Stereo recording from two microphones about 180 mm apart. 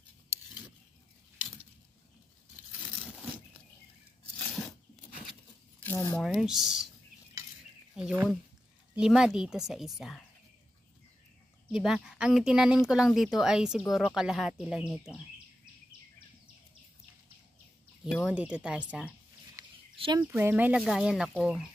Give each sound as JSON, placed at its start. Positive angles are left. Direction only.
{"t": 5.8, "sound": "a sound", "side_deg": 15}
{"t": 6.2, "sound": "speech", "side_deg": 0}
{"t": 7.9, "sound": "speech", "side_deg": -5}
{"t": 11.7, "sound": "speech", "side_deg": 0}
{"t": 18.2, "sound": "speech", "side_deg": -5}
{"t": 20.0, "sound": "speech", "side_deg": -25}
{"t": 20.2, "sound": "speech", "side_deg": -10}